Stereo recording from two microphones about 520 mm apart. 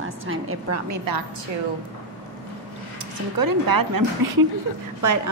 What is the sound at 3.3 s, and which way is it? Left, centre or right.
Speech, right.